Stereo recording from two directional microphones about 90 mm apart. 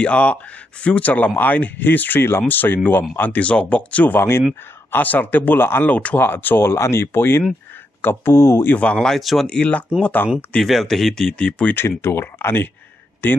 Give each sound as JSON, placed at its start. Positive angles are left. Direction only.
{"t": 0.0, "sound": "speech", "side_deg": 15}
{"t": 8.7, "sound": "speech", "side_deg": 10}
{"t": 9.5, "sound": "speech", "side_deg": 15}
{"t": 10.5, "sound": "speech", "side_deg": 5}
{"t": 12.0, "sound": "speech", "side_deg": 30}